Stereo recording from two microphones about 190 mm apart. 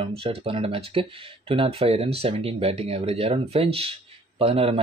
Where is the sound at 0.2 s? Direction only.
30° right (ahead or behind).